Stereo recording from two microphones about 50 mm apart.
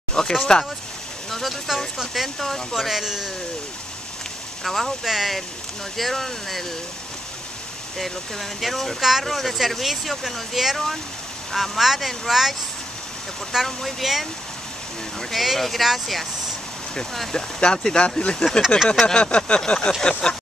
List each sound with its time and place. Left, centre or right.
0.1 s speech: centre
1.3 s speech: centre
4.6 s speech: centre
8.0 s speech: centre
13.7 s speech: centre
15.3 s speech: centre
17.6 s speech: centre
19.0 s a sound: left
20.0 s speech: centre